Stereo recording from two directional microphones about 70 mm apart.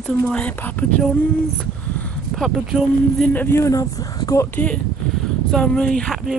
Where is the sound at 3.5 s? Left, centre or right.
Left.